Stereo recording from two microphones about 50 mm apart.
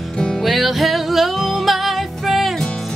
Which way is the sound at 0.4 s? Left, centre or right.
Centre.